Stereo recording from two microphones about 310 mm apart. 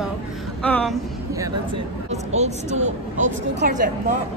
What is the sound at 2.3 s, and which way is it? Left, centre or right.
Speech, right.